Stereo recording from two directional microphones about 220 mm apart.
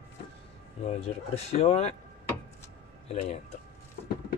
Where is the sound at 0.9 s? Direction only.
30° left (ahead or behind).